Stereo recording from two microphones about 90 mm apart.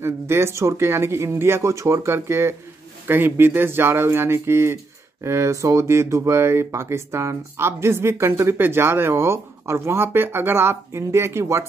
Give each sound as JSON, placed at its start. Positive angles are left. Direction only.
{"t": 0.0, "sound": "speech", "side_deg": -30}